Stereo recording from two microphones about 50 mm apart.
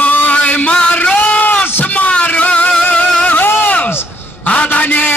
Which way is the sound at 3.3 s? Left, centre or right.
Left.